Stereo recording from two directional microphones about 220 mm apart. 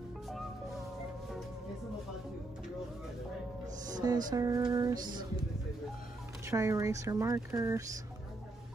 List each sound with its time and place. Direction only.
3.9 s music: 15° right (ahead or behind)
4.3 s speech: 15° right (ahead or behind)
6.4 s speech: 15° right (ahead or behind)